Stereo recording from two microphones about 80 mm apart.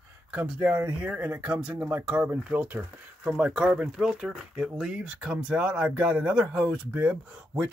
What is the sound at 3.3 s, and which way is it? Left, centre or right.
Speech, centre.